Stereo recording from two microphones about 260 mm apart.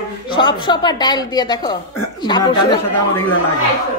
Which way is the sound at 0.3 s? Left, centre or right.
Centre.